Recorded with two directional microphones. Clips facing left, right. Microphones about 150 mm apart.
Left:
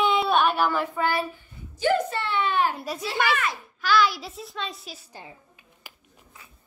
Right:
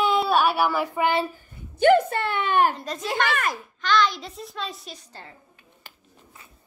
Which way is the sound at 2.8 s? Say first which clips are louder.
Even; 5° left (ahead or behind).